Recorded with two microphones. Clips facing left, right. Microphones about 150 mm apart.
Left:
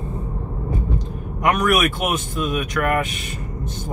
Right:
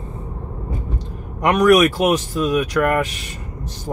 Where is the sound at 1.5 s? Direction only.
35° right (ahead or behind).